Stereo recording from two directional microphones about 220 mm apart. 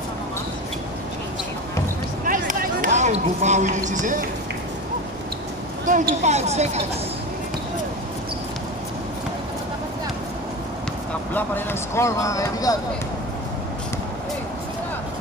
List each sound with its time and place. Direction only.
2.2 s a sound: 40° right (ahead or behind)
3.9 s speech: 35° right (ahead or behind)
5.9 s speech: 35° right (ahead or behind)
11.3 s speech: 10° left (ahead or behind)